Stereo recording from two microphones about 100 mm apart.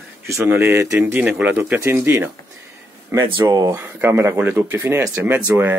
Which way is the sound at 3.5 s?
35° right (ahead or behind).